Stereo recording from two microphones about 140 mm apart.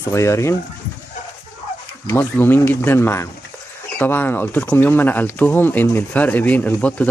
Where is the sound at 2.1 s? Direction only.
15° left (ahead or behind).